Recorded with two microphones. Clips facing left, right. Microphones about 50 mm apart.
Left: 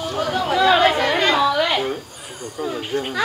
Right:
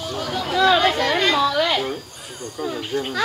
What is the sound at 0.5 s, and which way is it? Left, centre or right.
Speech, centre.